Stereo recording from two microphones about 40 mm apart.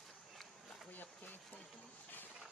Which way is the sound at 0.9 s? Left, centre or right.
Left.